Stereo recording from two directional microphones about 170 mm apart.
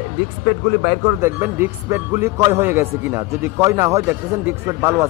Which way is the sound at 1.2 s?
15° right (ahead or behind).